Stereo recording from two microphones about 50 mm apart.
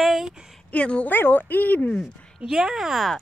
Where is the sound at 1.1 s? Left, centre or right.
Left.